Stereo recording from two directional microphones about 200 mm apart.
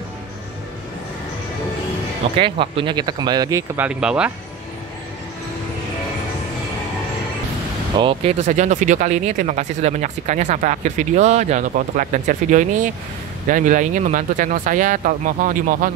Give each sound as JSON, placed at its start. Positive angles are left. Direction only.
{"t": 2.3, "sound": "speech", "side_deg": -25}
{"t": 8.0, "sound": "speech", "side_deg": -30}